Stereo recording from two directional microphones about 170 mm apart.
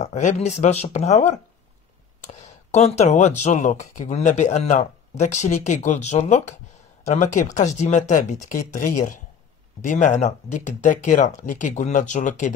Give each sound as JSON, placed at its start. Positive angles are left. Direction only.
{"t": 0.0, "sound": "speech", "side_deg": 45}